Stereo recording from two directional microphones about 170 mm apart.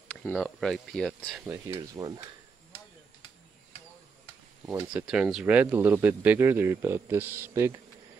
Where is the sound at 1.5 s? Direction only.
20° right (ahead or behind).